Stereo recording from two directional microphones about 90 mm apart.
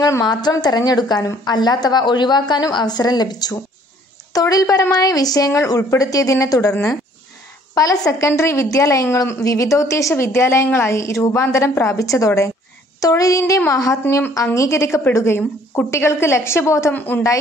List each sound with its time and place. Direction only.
0.2 s a woman's voice: 50° left (ahead or behind)
7.7 s a woman's voice: 45° left (ahead or behind)
16.9 s speech: 20° left (ahead or behind)